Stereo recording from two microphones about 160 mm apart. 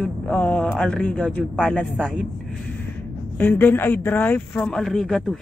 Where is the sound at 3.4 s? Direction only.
10° left (ahead or behind).